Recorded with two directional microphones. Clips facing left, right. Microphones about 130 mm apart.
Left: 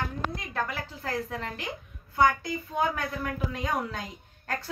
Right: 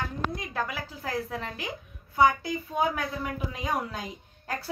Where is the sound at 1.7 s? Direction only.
10° right (ahead or behind).